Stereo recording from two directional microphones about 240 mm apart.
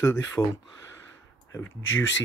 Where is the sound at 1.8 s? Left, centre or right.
Left.